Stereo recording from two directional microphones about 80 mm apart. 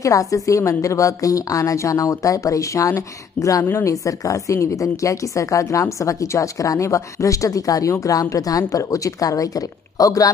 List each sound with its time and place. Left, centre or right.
0.0 s a woman's voice: left